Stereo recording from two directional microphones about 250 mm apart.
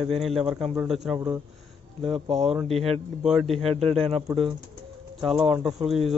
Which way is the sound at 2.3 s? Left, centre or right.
Centre.